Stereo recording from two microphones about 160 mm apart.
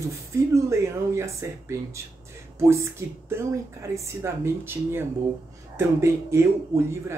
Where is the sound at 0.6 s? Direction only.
20° right (ahead or behind).